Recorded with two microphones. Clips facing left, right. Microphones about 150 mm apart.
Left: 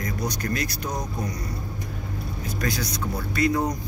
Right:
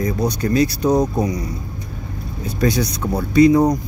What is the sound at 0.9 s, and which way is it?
Speech, 70° right (ahead or behind).